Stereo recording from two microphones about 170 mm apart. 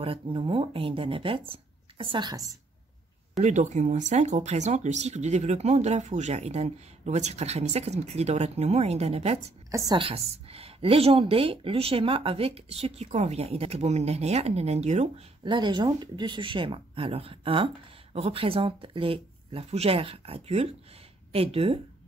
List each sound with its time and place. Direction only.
0.0 s speech: 30° right (ahead or behind)
3.3 s speech: 45° right (ahead or behind)
9.7 s a woman's voice: 20° right (ahead or behind)
9.9 s speech: 35° right (ahead or behind)
15.4 s speech: 25° right (ahead or behind)